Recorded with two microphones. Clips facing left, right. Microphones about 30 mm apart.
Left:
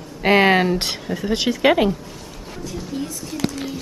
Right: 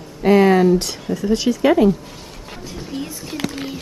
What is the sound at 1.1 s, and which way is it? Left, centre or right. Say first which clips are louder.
Speech: right 4 dB; left.